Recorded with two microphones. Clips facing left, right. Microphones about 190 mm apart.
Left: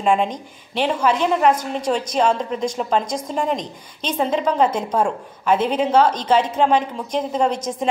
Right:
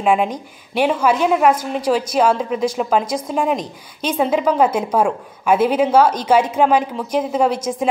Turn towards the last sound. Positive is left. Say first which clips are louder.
# right 3 dB
turn(degrees=-5)  # may be behind; listen again after turning